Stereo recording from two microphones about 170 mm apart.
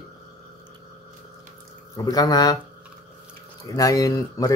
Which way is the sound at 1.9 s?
20° left (ahead or behind).